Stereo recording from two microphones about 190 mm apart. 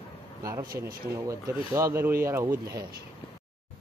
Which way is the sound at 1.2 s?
15° right (ahead or behind).